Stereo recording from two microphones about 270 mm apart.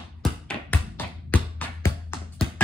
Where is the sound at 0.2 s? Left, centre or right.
Centre.